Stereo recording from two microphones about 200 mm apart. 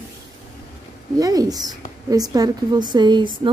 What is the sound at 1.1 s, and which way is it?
Speech, 20° right (ahead or behind).